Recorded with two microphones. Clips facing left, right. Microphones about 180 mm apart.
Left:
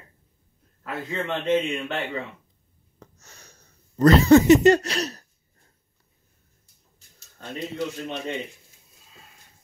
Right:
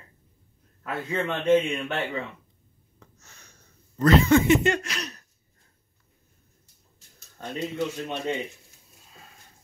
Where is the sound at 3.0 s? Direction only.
40° left (ahead or behind).